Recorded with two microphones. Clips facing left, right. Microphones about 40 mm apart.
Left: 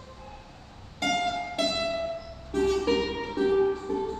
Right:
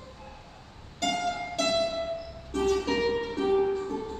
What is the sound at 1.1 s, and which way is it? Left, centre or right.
Music, left.